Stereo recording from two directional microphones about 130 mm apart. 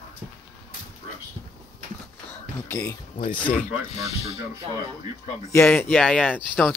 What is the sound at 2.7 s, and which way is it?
Speech, 25° left (ahead or behind).